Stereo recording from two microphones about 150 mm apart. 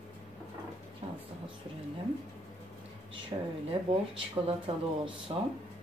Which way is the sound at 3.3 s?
35° right (ahead or behind).